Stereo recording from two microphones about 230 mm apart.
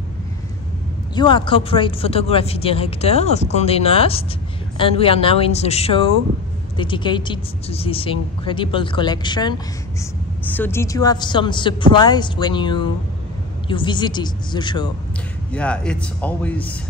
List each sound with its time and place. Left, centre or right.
1.1 s speech: left
15.5 s a man's voice: centre